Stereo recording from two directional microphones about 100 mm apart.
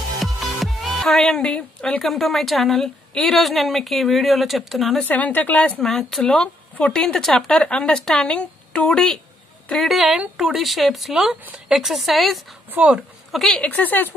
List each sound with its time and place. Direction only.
0.2 s speech: centre (ahead or behind)
5.0 s speech: 15° left (ahead or behind)
5.8 s speech: 5° left (ahead or behind)
12.7 s speech: 10° right (ahead or behind)
13.3 s speech: 5° left (ahead or behind)
13.7 s speech: 15° left (ahead or behind)